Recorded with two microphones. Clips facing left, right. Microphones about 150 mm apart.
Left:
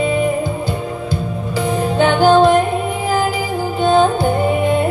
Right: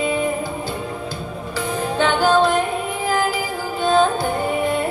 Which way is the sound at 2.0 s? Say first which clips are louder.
Left 5 dB; 25° left (ahead or behind).